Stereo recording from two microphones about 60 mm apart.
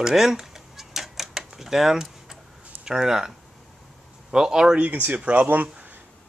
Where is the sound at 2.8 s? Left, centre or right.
Centre.